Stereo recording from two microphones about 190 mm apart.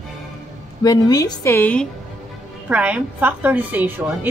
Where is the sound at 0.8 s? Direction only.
20° left (ahead or behind).